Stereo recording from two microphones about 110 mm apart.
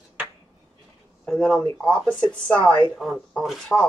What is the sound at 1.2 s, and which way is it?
Speech, 5° left (ahead or behind).